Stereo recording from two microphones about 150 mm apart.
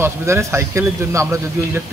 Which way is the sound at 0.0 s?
20° right (ahead or behind).